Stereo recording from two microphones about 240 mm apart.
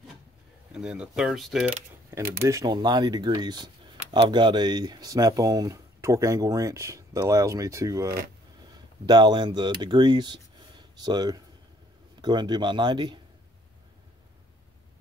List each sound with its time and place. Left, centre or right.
0.7 s speech: centre